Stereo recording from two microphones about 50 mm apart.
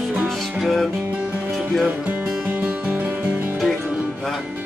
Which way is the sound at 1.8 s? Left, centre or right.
Right.